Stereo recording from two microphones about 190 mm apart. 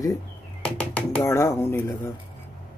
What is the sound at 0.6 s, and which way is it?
Speech, 5° left (ahead or behind).